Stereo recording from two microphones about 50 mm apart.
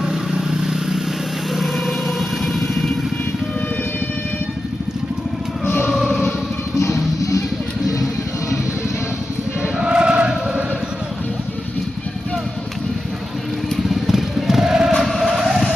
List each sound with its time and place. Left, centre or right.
0.1 s vehicle: centre
5.9 s choir: centre
6.8 s music: left
9.6 s chant: centre
13.8 s music: centre
15.0 s a sound: centre